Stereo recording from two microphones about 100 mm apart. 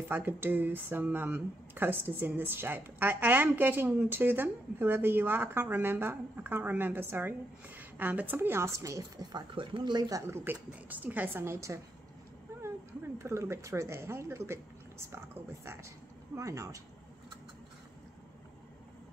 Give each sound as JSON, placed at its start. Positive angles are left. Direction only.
{"t": 0.1, "sound": "speech", "side_deg": -20}
{"t": 10.2, "sound": "speech", "side_deg": -25}
{"t": 13.2, "sound": "speech", "side_deg": -30}